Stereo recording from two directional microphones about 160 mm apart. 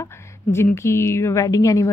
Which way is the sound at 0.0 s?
15° left (ahead or behind).